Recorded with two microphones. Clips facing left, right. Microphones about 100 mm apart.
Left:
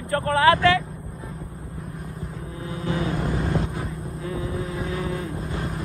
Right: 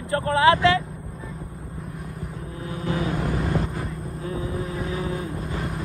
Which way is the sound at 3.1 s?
Centre (ahead or behind).